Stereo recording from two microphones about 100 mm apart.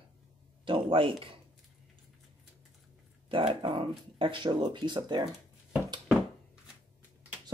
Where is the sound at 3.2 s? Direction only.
60° right (ahead or behind).